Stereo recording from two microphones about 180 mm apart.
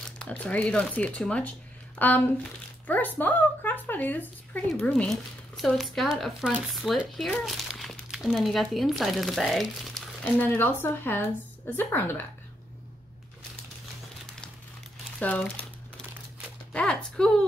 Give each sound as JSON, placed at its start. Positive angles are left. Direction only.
{"t": 0.2, "sound": "a woman's voice", "side_deg": 5}
{"t": 15.1, "sound": "speech", "side_deg": 10}
{"t": 16.7, "sound": "a woman's voice", "side_deg": 5}